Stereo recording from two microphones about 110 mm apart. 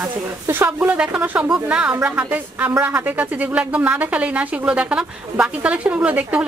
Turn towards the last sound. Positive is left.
turn(degrees=-15)  # may be behind; listen again after turning